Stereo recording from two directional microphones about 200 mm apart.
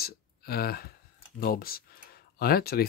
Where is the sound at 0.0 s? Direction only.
50° left (ahead or behind).